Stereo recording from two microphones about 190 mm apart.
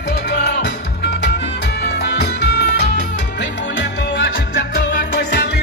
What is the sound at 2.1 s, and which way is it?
Music, 60° left (ahead or behind).